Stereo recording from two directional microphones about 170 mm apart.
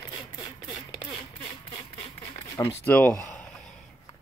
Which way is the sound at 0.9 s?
30° left (ahead or behind).